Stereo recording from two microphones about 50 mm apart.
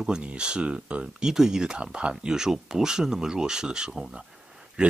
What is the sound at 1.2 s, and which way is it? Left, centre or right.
Speech, centre.